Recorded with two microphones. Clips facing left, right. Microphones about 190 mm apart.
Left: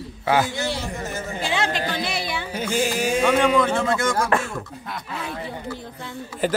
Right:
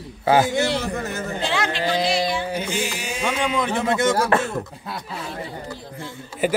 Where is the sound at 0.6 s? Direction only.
60° right (ahead or behind).